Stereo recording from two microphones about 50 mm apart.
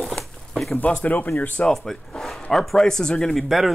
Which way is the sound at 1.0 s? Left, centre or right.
Left.